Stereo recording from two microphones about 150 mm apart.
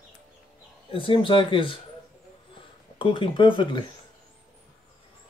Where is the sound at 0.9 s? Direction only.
35° left (ahead or behind).